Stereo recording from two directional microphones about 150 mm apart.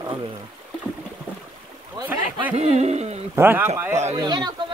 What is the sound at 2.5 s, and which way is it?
Speech, 45° right (ahead or behind).